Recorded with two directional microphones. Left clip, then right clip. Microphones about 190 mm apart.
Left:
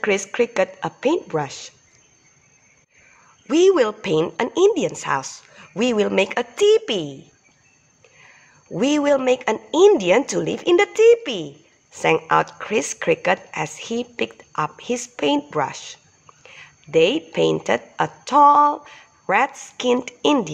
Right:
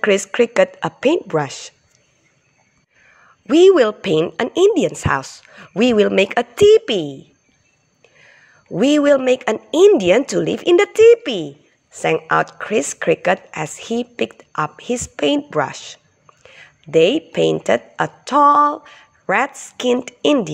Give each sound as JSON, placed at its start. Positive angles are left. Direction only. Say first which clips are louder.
{"t": 0.0, "sound": "speech", "louder": "right 5 dB", "side_deg": -25}
{"t": 3.4, "sound": "speech", "louder": "right 5 dB", "side_deg": -20}